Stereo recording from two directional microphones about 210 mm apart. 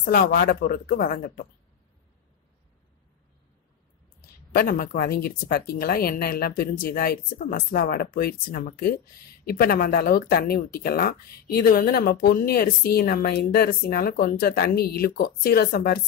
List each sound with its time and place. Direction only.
0.0 s speech: 45° left (ahead or behind)
4.6 s speech: 45° left (ahead or behind)